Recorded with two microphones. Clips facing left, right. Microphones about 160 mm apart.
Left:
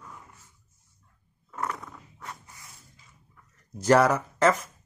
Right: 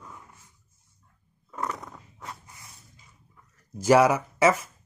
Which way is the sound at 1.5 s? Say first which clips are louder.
Even; 15° right (ahead or behind).